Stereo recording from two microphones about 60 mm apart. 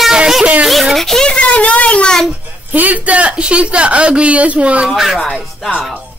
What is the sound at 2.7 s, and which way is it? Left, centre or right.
Speech, right.